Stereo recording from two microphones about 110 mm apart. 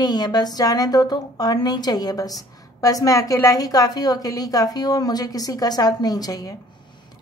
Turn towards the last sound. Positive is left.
turn(degrees=35)  # may be behind; listen again after turning